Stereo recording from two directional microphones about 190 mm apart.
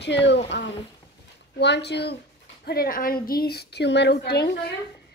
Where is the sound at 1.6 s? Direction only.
65° left (ahead or behind).